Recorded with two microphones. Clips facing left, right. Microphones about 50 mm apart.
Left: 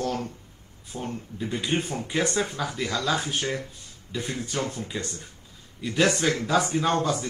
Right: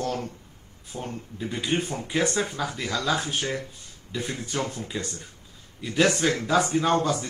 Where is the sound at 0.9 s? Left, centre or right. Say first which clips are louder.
Left 1 dB; right.